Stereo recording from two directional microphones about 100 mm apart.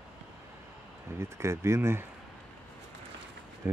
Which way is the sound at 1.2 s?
25° right (ahead or behind).